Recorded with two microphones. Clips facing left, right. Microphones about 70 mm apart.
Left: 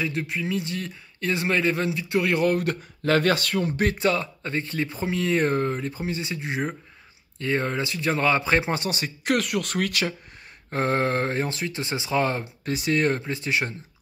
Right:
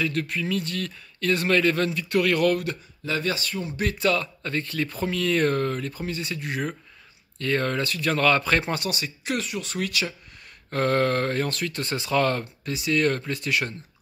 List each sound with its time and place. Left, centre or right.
0.0 s speech: centre
2.5 s speech: left
3.0 s speech: left
3.6 s speech: left
4.0 s speech: left
9.0 s speech: left
10.7 s speech: left
12.6 s speech: left
13.0 s speech: left